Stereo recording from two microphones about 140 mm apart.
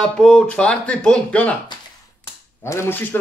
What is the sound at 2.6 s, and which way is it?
Speech, 15° left (ahead or behind).